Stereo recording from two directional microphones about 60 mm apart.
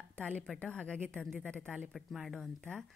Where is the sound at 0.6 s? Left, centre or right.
Centre.